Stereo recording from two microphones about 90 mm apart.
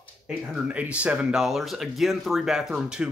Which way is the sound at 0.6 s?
15° right (ahead or behind).